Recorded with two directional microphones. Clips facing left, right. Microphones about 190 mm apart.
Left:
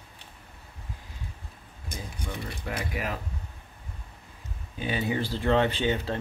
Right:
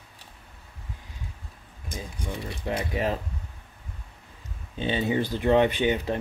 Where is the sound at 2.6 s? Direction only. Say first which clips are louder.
Right 7 dB; 25° right (ahead or behind).